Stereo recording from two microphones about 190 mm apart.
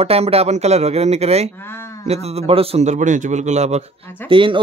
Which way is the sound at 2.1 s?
35° right (ahead or behind).